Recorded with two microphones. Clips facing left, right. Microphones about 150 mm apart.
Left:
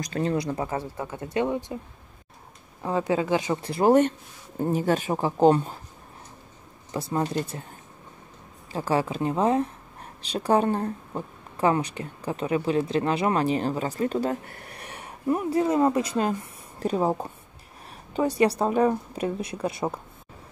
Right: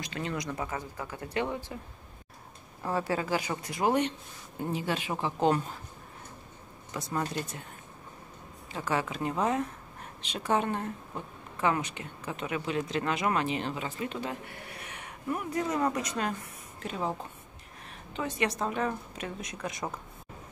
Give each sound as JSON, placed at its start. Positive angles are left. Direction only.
{"t": 0.0, "sound": "speech", "side_deg": 40}
{"t": 2.8, "sound": "a woman's voice", "side_deg": 15}
{"t": 6.9, "sound": "a woman's voice", "side_deg": 30}
{"t": 8.7, "sound": "a woman's voice", "side_deg": 35}
{"t": 16.8, "sound": "a woman's voice", "side_deg": 40}